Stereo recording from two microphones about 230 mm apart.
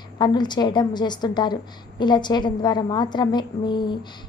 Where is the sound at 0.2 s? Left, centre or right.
Centre.